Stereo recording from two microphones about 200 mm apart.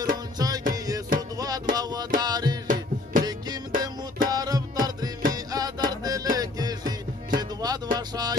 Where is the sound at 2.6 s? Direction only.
45° right (ahead or behind).